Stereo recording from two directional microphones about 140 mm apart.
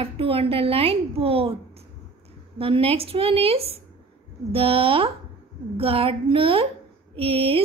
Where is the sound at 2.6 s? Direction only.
40° right (ahead or behind).